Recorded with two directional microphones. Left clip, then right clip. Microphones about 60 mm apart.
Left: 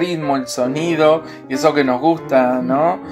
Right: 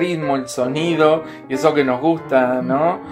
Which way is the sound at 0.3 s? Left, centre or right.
Left.